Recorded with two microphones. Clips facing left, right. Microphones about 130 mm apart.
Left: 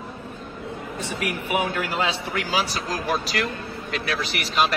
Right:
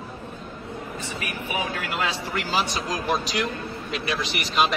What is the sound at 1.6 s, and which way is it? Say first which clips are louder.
Speech: left 1 dB; 30° left (ahead or behind).